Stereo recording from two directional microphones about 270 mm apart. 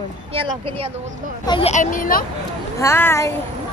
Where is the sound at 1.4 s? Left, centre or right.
Centre.